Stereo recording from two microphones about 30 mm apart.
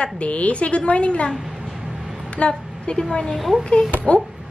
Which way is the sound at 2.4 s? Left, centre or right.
Left.